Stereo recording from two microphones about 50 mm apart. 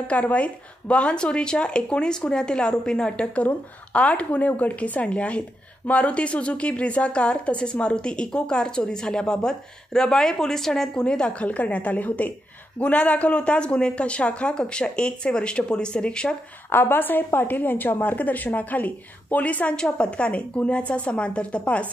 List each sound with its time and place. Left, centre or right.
0.0 s a woman's voice: left
3.3 s a woman's voice: left
11.4 s a woman's voice: left
16.7 s a woman's voice: left